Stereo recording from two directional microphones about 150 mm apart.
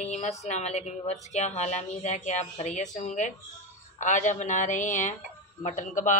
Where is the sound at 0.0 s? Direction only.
50° left (ahead or behind).